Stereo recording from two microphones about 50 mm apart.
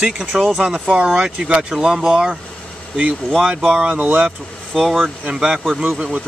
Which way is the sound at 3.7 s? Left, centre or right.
Right.